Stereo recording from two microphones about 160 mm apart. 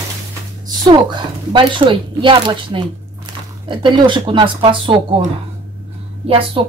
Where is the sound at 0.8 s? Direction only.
30° right (ahead or behind).